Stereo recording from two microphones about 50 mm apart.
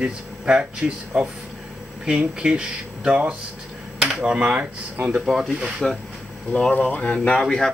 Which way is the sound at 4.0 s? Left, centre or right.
Centre.